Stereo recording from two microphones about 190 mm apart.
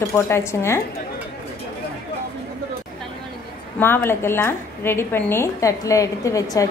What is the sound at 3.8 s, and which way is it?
A woman's voice, 10° left (ahead or behind).